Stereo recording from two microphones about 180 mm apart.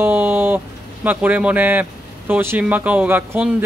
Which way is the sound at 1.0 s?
10° right (ahead or behind).